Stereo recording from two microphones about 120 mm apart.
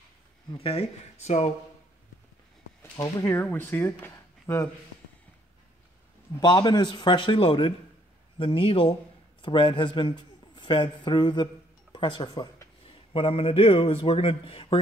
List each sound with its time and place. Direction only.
0.6 s speech: 50° left (ahead or behind)
3.3 s speech: 15° left (ahead or behind)
4.0 s a sound: 20° left (ahead or behind)
6.4 s a man's voice: 40° left (ahead or behind)
12.8 s a man's voice: 50° left (ahead or behind)